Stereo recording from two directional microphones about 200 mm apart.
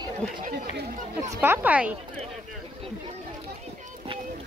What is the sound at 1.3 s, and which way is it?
Speech, 10° right (ahead or behind).